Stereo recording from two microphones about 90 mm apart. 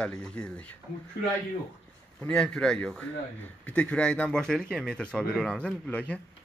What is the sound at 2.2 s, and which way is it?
Speech, 10° left (ahead or behind).